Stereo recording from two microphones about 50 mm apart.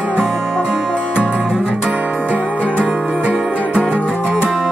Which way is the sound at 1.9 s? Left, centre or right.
Right.